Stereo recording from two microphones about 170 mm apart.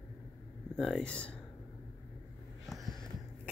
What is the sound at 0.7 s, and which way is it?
Speech, centre (ahead or behind).